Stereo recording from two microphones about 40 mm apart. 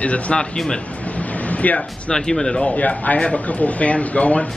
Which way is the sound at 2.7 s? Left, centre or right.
Left.